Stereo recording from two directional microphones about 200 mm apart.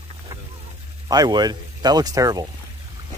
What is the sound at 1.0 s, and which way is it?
Speech, 20° right (ahead or behind).